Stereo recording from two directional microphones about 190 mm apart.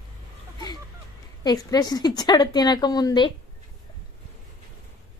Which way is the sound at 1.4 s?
20° left (ahead or behind).